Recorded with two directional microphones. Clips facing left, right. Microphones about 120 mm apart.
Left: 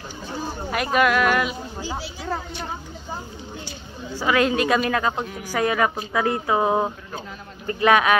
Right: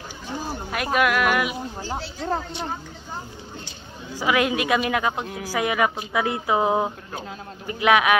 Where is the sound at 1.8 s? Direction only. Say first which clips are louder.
Even; 5° left (ahead or behind).